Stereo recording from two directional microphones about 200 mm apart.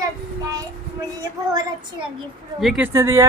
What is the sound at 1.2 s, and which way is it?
Speech, 20° right (ahead or behind).